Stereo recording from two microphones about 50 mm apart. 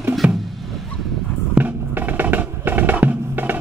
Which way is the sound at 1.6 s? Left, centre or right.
Right.